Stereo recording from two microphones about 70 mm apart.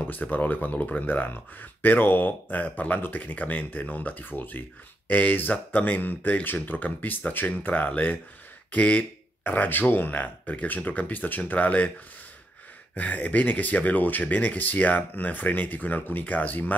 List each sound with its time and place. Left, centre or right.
0.0 s speech: left
12.9 s speech: left